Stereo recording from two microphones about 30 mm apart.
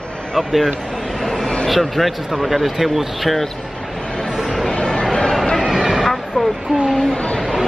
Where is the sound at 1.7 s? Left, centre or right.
Centre.